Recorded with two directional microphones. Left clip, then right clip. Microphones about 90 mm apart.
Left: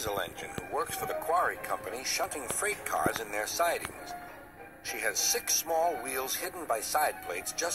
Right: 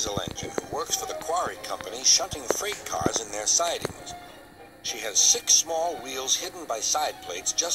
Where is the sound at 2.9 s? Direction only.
5° right (ahead or behind).